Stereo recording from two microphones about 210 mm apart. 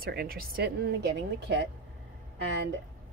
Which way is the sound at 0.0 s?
45° right (ahead or behind).